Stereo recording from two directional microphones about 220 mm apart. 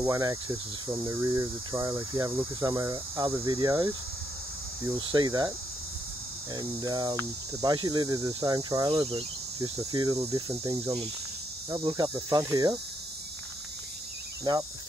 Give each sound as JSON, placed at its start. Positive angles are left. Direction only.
{"t": 0.0, "sound": "speech", "side_deg": -15}
{"t": 4.8, "sound": "cricket", "side_deg": -20}
{"t": 6.5, "sound": "speech", "side_deg": -20}
{"t": 11.7, "sound": "cricket", "side_deg": -20}